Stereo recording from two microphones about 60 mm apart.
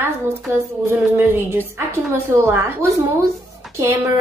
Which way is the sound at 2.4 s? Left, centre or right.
Right.